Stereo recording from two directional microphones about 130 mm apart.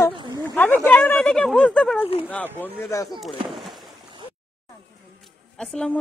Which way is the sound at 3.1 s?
Centre (ahead or behind).